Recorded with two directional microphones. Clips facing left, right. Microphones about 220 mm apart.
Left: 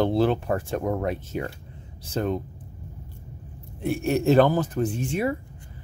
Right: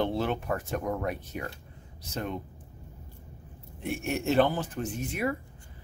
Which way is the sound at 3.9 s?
35° left (ahead or behind).